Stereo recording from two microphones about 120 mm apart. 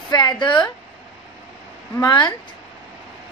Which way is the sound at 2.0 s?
40° left (ahead or behind).